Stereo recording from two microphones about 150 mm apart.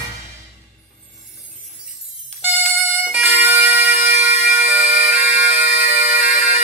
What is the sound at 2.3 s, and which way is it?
Music, 45° right (ahead or behind).